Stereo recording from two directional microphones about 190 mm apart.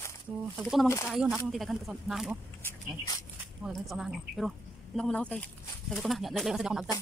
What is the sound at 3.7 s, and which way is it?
Speech, centre (ahead or behind).